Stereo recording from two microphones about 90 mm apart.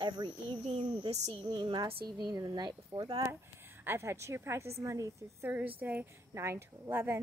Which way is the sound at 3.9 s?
30° right (ahead or behind).